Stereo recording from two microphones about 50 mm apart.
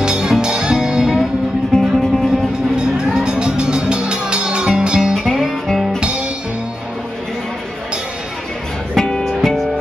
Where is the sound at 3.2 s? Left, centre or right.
Centre.